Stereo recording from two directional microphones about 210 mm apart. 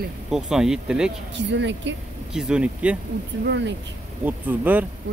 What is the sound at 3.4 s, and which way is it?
Speech, 55° right (ahead or behind).